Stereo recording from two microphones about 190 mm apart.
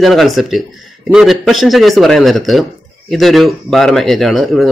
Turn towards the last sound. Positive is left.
turn(degrees=0)  # may be behind; listen again after turning